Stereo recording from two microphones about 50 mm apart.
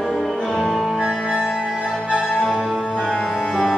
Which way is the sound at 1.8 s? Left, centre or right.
Centre.